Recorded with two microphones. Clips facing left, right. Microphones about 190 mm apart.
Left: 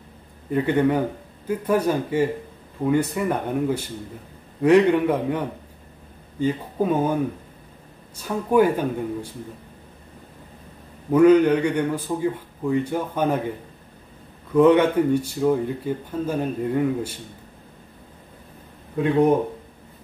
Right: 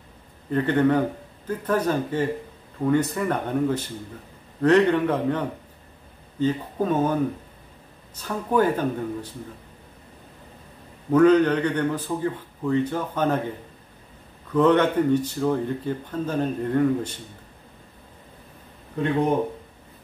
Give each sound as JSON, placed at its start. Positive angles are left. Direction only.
{"t": 0.5, "sound": "speech", "side_deg": 10}
{"t": 6.4, "sound": "speech", "side_deg": 10}
{"t": 8.2, "sound": "speech", "side_deg": 10}
{"t": 11.1, "sound": "speech", "side_deg": 10}
{"t": 14.5, "sound": "speech", "side_deg": 10}